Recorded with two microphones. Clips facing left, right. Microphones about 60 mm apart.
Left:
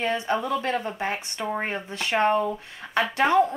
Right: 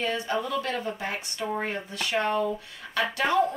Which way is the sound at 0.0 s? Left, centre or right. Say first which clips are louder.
Left 3 dB; left.